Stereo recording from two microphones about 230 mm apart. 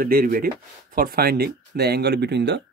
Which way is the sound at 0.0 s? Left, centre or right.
Right.